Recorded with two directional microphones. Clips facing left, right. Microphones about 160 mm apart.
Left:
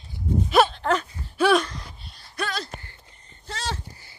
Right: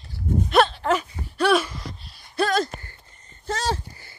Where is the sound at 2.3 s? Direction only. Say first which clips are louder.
Right 8 dB; 45° right (ahead or behind).